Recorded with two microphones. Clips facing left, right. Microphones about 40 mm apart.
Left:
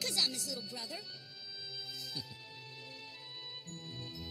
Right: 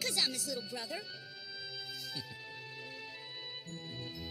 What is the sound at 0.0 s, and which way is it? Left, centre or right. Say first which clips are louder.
Music: right 1 dB; centre.